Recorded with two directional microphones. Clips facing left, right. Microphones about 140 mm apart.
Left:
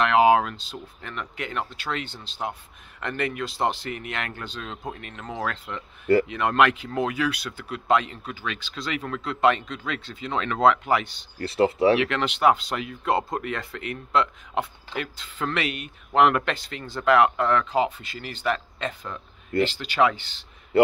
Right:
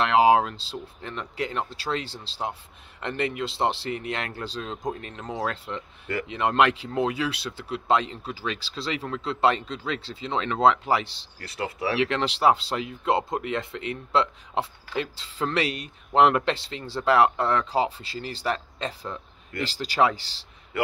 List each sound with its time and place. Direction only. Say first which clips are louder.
0.0 s speech: even; 30° right (ahead or behind)
11.3 s speech: left 11 dB; 30° left (ahead or behind)
12.0 s speech: even; 30° right (ahead or behind)
20.7 s a sound: left 9 dB; 30° left (ahead or behind)